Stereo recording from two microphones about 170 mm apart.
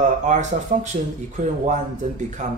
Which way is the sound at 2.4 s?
45° right (ahead or behind).